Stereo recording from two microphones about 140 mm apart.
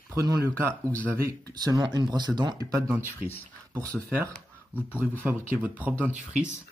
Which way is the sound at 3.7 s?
25° right (ahead or behind).